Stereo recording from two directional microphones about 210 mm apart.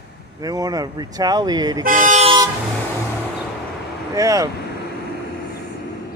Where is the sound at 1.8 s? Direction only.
40° right (ahead or behind).